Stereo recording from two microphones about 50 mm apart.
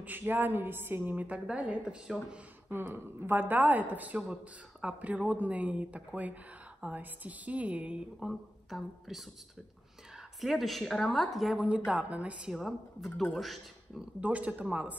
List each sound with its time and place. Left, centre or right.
0.0 s a woman's voice: right
2.7 s a woman's voice: right
8.3 s speech: centre
10.4 s a man's voice: centre
11.5 s speech: right
12.4 s a woman's voice: centre
14.2 s speech: right